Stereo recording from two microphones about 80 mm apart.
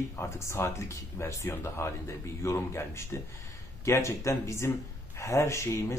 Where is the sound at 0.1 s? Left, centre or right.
Left.